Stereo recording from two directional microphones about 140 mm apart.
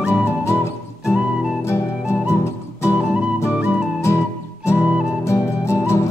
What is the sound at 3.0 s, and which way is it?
Music, 5° right (ahead or behind).